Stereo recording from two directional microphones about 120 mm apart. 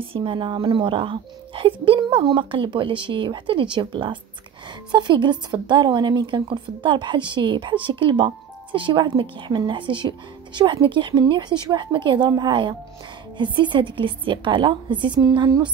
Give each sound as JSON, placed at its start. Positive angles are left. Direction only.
{"t": 0.0, "sound": "speech", "side_deg": -50}